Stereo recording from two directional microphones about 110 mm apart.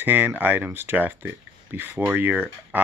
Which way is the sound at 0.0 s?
15° right (ahead or behind).